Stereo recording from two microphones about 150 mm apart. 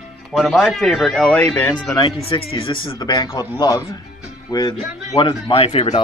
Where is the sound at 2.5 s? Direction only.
35° left (ahead or behind).